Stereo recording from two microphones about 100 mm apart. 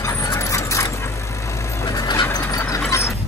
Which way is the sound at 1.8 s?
40° left (ahead or behind).